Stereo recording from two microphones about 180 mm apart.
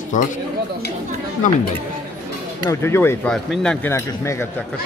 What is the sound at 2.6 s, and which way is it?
Speech, 15° left (ahead or behind).